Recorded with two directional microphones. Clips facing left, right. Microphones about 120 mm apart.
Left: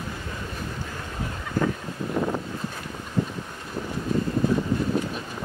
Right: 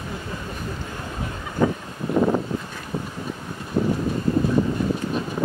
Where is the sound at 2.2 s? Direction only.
25° right (ahead or behind).